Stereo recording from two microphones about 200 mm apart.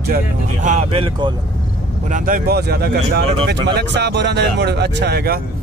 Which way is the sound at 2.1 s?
45° right (ahead or behind).